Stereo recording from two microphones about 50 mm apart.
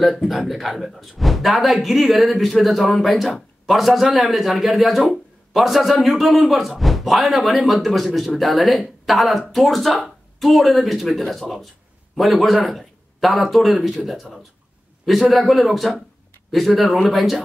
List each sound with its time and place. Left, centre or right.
0.0 s speech: centre
5.1 s a sound: centre
6.0 s speech: centre